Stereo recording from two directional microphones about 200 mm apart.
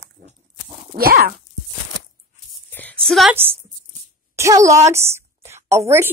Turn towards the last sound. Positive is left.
turn(degrees=-10)  # may be behind; listen again after turning